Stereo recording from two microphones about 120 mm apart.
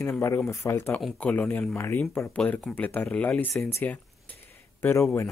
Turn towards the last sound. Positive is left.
turn(degrees=15)  # may be behind; listen again after turning